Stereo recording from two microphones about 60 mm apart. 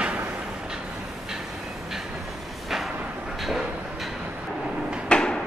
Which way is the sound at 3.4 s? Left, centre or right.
Centre.